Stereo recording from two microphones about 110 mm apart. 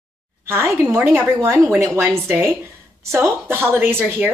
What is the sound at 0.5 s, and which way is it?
A woman's voice, 20° right (ahead or behind).